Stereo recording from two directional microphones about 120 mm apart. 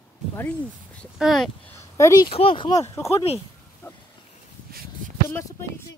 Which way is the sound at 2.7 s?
25° left (ahead or behind).